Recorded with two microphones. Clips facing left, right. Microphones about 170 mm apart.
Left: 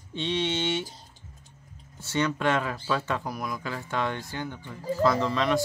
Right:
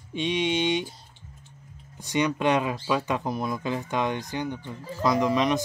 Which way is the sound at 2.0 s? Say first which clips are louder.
Right 2 dB; 15° right (ahead or behind).